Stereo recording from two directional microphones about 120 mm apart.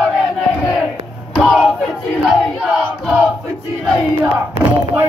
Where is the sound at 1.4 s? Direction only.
5° right (ahead or behind).